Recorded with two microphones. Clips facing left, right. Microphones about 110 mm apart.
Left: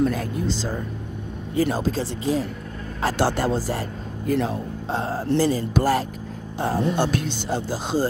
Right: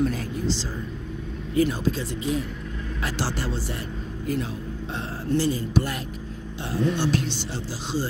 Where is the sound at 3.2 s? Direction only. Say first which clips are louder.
Left 9 dB; 50° left (ahead or behind).